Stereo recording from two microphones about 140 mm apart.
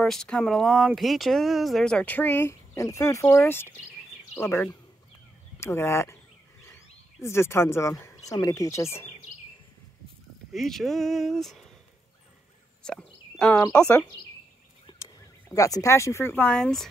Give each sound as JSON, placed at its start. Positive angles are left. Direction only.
{"t": 0.0, "sound": "speech", "side_deg": 5}
{"t": 10.5, "sound": "speech", "side_deg": 0}
{"t": 12.8, "sound": "a sound", "side_deg": 5}
{"t": 13.6, "sound": "speech", "side_deg": 15}
{"t": 14.9, "sound": "a sound", "side_deg": 30}
{"t": 15.5, "sound": "speech", "side_deg": 25}
{"t": 16.4, "sound": "speech", "side_deg": 5}